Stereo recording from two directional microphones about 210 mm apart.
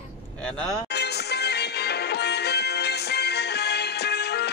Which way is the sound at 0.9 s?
50° left (ahead or behind).